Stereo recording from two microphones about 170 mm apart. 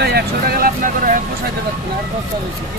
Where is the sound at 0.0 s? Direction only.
65° right (ahead or behind).